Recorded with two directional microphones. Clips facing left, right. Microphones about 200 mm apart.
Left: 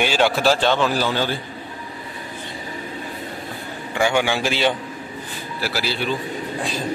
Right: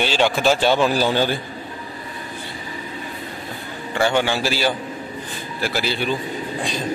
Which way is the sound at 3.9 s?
15° left (ahead or behind).